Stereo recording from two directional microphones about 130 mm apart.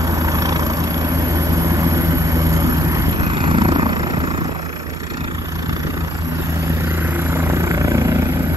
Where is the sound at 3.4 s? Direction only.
40° right (ahead or behind).